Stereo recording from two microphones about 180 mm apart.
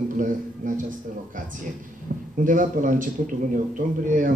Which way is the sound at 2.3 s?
45° right (ahead or behind).